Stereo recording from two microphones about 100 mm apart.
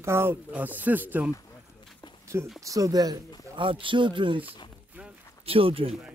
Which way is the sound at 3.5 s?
60° right (ahead or behind).